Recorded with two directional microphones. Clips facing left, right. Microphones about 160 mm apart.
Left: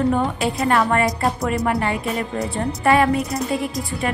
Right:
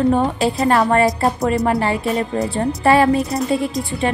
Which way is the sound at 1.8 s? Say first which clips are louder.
Right 4 dB; 30° right (ahead or behind).